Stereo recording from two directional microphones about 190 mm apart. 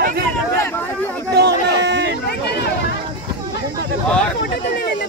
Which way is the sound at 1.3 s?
60° right (ahead or behind).